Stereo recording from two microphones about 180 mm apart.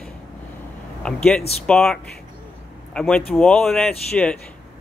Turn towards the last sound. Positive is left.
turn(degrees=5)  # may be behind; listen again after turning